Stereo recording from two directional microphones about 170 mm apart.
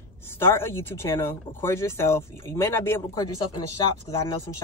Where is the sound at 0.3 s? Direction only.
15° left (ahead or behind).